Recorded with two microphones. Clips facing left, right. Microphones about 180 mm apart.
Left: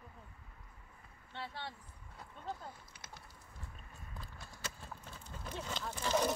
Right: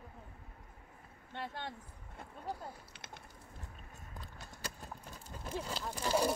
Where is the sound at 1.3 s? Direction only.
50° right (ahead or behind).